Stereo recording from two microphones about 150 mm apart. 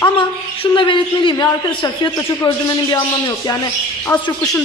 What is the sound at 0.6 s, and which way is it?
A man's voice, 30° left (ahead or behind).